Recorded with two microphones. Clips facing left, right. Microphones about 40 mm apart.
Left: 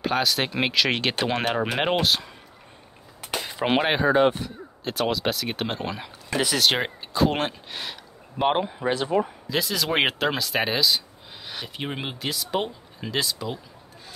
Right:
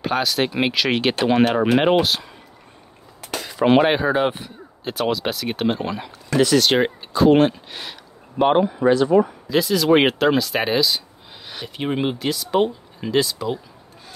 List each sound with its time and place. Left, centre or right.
0.0 s speech: centre
3.2 s a sound: left
3.7 s speech: centre
4.3 s a sound: centre
4.9 s speech: centre
8.8 s speech: centre
9.2 s speech: centre